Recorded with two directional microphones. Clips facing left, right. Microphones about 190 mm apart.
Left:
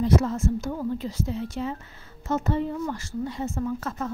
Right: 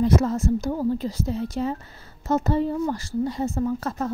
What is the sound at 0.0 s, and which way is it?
A woman's voice, 45° right (ahead or behind).